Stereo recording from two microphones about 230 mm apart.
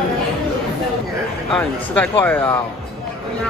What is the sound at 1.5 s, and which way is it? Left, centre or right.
Speech, centre.